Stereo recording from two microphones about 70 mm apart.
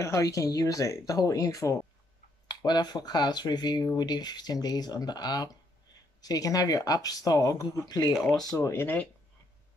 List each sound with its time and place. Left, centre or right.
0.0 s speech: left
2.4 s speech: left
8.5 s speech: left